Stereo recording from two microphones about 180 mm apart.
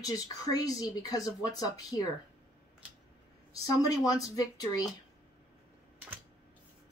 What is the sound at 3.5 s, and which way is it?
A woman's voice, 20° left (ahead or behind).